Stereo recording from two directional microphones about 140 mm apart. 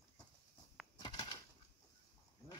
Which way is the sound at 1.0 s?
30° left (ahead or behind).